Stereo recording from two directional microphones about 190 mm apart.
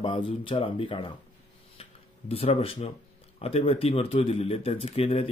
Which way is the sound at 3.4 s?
30° left (ahead or behind).